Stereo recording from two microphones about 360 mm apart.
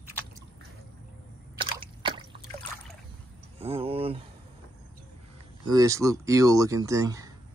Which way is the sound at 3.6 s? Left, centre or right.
Centre.